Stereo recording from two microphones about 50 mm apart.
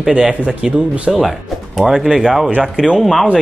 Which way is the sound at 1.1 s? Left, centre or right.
Centre.